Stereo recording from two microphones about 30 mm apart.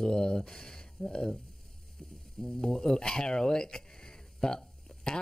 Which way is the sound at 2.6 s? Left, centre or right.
Centre.